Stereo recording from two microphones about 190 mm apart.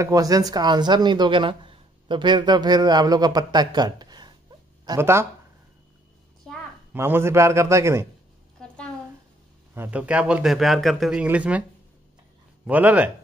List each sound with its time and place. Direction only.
0.0 s speech: 20° right (ahead or behind)
6.9 s a man's voice: 10° right (ahead or behind)
9.8 s a man's voice: 5° right (ahead or behind)
12.6 s a man's voice: 10° right (ahead or behind)